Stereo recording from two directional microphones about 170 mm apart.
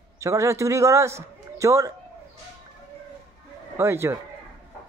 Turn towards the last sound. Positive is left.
turn(degrees=-15)  # may be behind; listen again after turning